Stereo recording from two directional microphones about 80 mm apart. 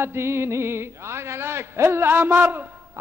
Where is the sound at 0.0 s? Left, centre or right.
Right.